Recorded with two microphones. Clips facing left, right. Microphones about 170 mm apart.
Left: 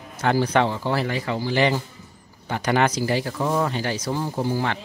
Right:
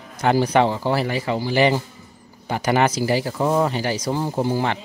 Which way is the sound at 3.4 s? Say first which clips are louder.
Right 3 dB; 20° right (ahead or behind).